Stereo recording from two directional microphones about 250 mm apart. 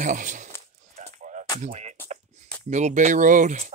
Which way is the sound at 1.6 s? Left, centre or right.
Right.